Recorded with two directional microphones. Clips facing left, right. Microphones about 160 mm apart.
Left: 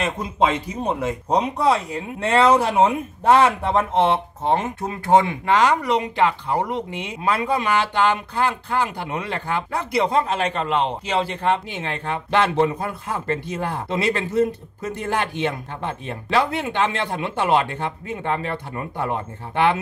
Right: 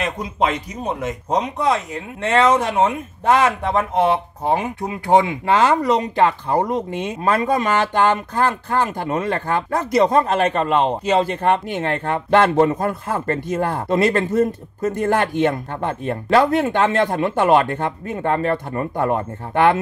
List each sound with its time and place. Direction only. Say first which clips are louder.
0.0 s speech: even; 25° left (ahead or behind)
2.7 s speech: left 1 dB; 5° left (ahead or behind)
4.0 s speech: right 1 dB; 10° right (ahead or behind)
5.5 s speech: right 2 dB; 30° right (ahead or behind); by 19.8 s 50° right (ahead or behind)